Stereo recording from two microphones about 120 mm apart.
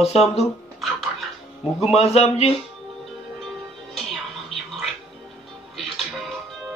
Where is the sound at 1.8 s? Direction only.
60° left (ahead or behind).